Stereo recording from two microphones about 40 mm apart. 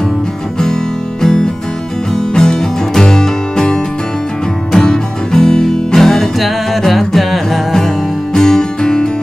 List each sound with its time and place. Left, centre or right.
1.2 s music: centre